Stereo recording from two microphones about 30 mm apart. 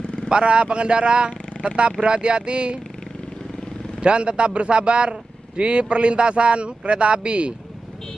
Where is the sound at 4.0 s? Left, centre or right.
Right.